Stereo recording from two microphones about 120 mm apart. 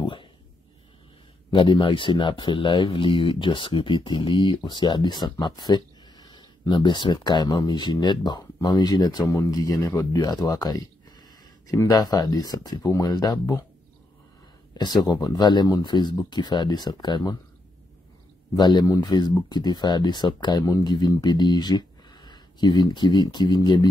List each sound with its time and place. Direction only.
0.0 s a sound: 45° left (ahead or behind)
1.5 s speech: 45° left (ahead or behind)
14.7 s speech: 35° left (ahead or behind)
18.5 s speech: 35° left (ahead or behind)